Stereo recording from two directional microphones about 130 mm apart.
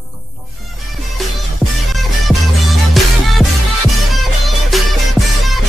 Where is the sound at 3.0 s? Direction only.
Centre (ahead or behind).